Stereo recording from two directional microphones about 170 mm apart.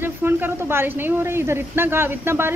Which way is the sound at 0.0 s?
10° right (ahead or behind).